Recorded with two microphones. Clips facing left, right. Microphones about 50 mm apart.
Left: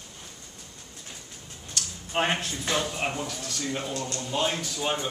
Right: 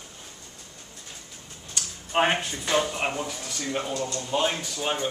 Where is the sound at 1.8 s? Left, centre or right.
Centre.